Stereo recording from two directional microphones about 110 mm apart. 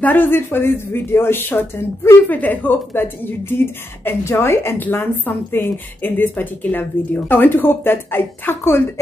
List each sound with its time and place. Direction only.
0.0 s speech: 20° left (ahead or behind)